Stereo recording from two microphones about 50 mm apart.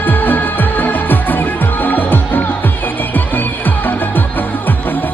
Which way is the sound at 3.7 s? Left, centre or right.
Left.